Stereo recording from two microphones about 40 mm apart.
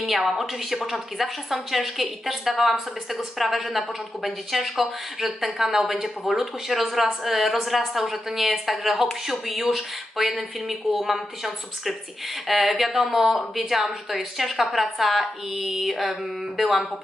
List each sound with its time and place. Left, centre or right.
0.0 s speech: centre